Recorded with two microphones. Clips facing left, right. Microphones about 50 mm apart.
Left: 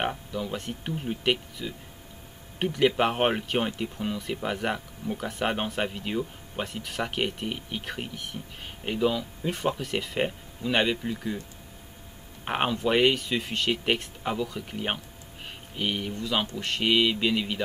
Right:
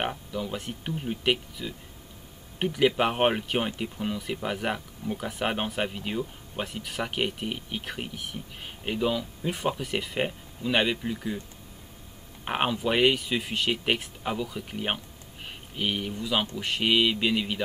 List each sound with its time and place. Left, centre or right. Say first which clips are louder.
0.0 s speech: left 1 dB; centre
12.4 s speech: left 1 dB; centre